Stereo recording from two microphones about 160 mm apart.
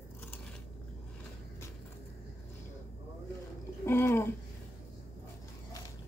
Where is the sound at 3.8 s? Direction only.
15° left (ahead or behind).